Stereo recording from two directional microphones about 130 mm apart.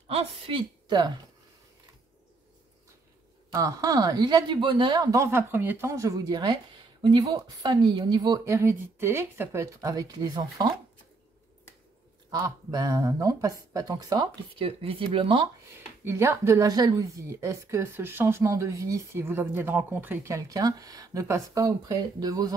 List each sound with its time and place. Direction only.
0.1 s a woman's voice: 45° right (ahead or behind)
3.5 s speech: 25° right (ahead or behind)
12.3 s speech: 30° right (ahead or behind)
15.7 s speech: 20° right (ahead or behind)